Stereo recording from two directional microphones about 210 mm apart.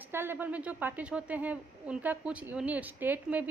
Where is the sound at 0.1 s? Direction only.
10° right (ahead or behind).